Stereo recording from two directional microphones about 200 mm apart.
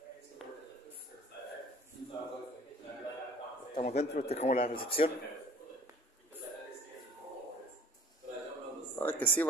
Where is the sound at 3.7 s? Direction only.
35° left (ahead or behind).